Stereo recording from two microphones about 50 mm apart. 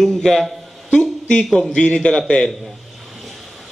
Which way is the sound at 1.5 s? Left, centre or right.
Centre.